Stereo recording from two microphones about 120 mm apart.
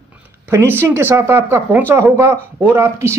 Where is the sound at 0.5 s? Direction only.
20° right (ahead or behind).